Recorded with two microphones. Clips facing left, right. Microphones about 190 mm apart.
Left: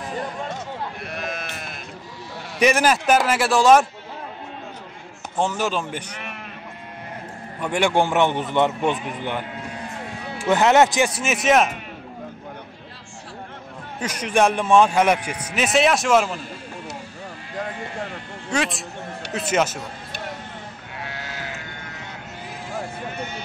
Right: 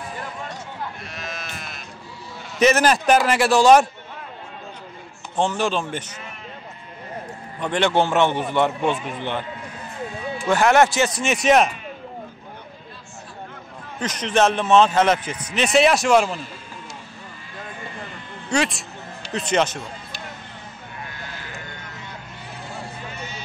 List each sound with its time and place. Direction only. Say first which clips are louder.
1.0 s sheep: left 4 dB; 55° left (ahead or behind)
2.6 s a man's voice: right 1 dB; 10° left (ahead or behind)
5.4 s a man's voice: right 1 dB; 5° left (ahead or behind)
7.6 s a man's voice: even; 10° left (ahead or behind)
10.2 s music: even; 70° left (ahead or behind)
10.5 s speech: left 1 dB; 20° left (ahead or behind)
11.1 s a man's voice: right 3 dB; 5° left (ahead or behind)
13.9 s a man's voice: even; 10° left (ahead or behind)
17.6 s sheep: left 6 dB; 75° left (ahead or behind)
18.5 s a man's voice: right 2 dB; centre (ahead or behind)
21.0 s sheep: left 5 dB; 90° left
23.0 s vehicle: left 4 dB; 55° left (ahead or behind)